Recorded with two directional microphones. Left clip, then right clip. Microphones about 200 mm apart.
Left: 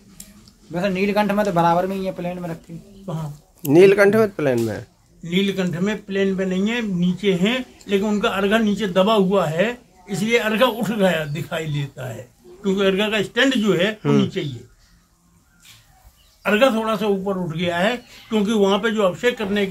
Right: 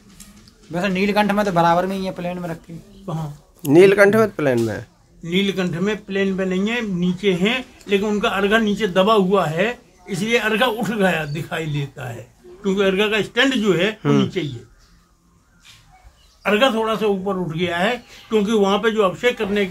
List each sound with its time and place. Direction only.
0.7 s speech: 40° right (ahead or behind)
3.1 s a man's voice: 10° right (ahead or behind)
16.4 s a man's voice: centre (ahead or behind)